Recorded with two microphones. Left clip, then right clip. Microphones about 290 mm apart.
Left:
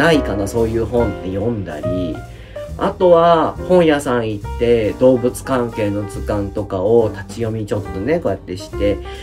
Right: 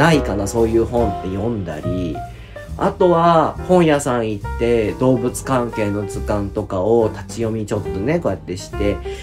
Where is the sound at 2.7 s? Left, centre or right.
Centre.